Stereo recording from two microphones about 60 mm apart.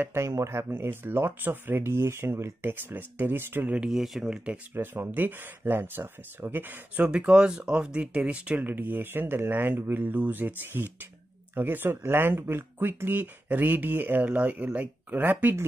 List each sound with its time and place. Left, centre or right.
0.1 s speech: right
0.7 s speech: right
3.6 s speech: centre
3.9 s speech: centre
4.7 s speech: right
7.0 s speech: centre; by 14.3 s right
14.3 s speech: right